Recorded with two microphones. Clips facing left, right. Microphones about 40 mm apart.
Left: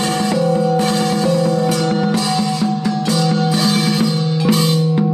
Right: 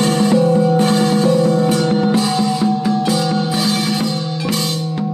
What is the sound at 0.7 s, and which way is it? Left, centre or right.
Music, right.